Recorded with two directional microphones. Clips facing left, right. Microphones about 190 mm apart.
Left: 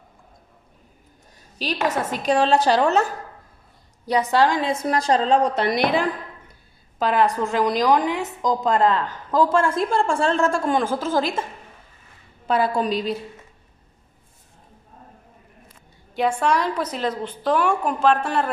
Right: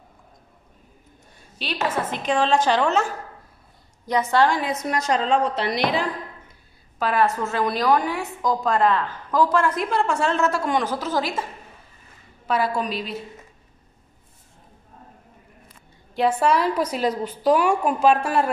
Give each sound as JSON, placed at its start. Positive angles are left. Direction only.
{"t": 1.9, "sound": "a woman's voice", "side_deg": 40}
{"t": 4.0, "sound": "a woman's voice", "side_deg": 15}
{"t": 5.6, "sound": "a woman's voice", "side_deg": 50}
{"t": 7.0, "sound": "a woman's voice", "side_deg": 20}
{"t": 10.4, "sound": "a woman's voice", "side_deg": 50}
{"t": 12.4, "sound": "a woman's voice", "side_deg": 30}
{"t": 16.2, "sound": "a woman's voice", "side_deg": -5}